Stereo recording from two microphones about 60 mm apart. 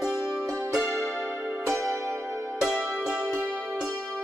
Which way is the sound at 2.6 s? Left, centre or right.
Centre.